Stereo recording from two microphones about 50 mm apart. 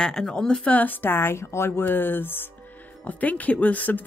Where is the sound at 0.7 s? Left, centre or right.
Left.